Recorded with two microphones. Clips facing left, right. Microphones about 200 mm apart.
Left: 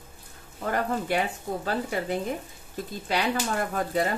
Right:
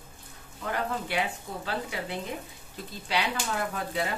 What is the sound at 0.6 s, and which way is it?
Speech, 45° left (ahead or behind).